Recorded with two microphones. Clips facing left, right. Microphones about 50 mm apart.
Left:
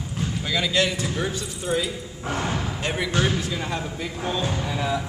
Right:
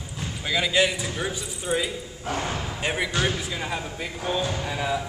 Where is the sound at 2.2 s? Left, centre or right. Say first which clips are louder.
Left 1 dB; left.